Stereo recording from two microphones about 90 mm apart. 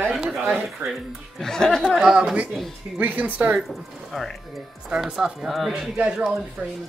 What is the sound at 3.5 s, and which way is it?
Speech, centre (ahead or behind).